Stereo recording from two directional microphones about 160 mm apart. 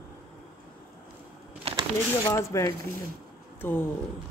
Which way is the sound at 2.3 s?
20° left (ahead or behind).